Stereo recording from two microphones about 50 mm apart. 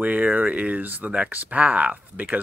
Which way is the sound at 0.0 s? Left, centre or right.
Right.